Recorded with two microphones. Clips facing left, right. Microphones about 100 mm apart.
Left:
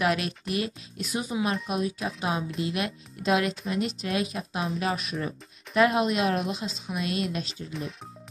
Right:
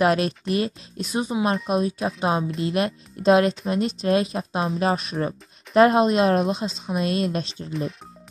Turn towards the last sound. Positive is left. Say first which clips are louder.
# right 7 dB
turn(degrees=0)  # may be behind; listen again after turning